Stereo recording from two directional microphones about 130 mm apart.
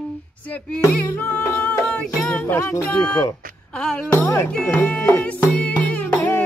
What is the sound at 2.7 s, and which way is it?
Speech, 20° left (ahead or behind).